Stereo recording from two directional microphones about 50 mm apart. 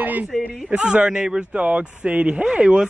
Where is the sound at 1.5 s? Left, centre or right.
Right.